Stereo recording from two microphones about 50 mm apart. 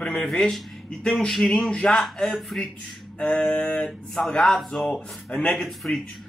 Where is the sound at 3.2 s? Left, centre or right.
Left.